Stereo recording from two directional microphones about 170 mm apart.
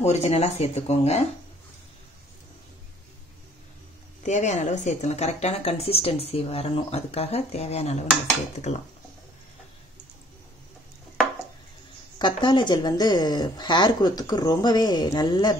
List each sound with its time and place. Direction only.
0.0 s a woman's voice: 40° left (ahead or behind)
4.2 s a woman's voice: 45° left (ahead or behind)
12.2 s a woman's voice: 25° left (ahead or behind)